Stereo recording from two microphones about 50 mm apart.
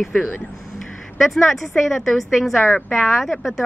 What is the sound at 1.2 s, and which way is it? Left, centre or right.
Speech, centre.